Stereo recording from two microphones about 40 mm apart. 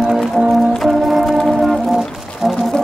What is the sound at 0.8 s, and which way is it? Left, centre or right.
Music, centre.